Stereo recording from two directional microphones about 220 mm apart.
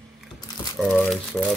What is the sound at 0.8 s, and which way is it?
Crumpling, centre (ahead or behind).